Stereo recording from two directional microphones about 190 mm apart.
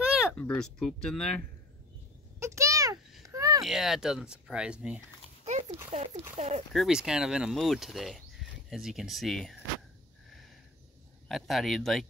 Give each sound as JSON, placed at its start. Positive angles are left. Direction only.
{"t": 0.3, "sound": "speech", "side_deg": 5}
{"t": 2.4, "sound": "a sound", "side_deg": -15}
{"t": 3.6, "sound": "speech", "side_deg": 0}
{"t": 5.4, "sound": "horse", "side_deg": -35}
{"t": 5.9, "sound": "speech", "side_deg": -35}
{"t": 6.7, "sound": "speech", "side_deg": 0}
{"t": 11.2, "sound": "speech", "side_deg": 0}